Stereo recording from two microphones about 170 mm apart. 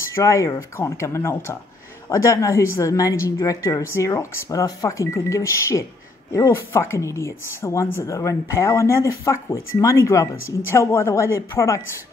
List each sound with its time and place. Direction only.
0.0 s a woman's voice: 15° left (ahead or behind)